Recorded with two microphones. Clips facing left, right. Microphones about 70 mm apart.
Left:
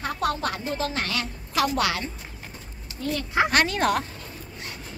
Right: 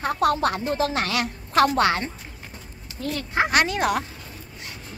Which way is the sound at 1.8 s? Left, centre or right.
Right.